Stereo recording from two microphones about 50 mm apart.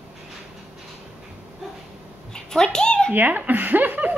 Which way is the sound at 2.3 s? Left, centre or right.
Centre.